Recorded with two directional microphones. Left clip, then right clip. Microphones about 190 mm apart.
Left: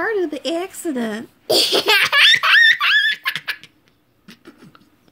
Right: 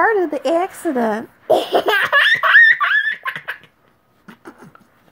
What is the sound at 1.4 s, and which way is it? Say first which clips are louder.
Speech: right 1 dB; 40° left (ahead or behind).